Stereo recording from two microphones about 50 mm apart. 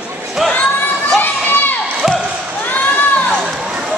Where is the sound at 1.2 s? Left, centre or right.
Left.